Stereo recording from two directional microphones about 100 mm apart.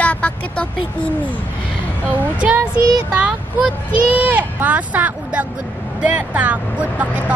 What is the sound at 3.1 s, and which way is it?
Speech, 10° right (ahead or behind).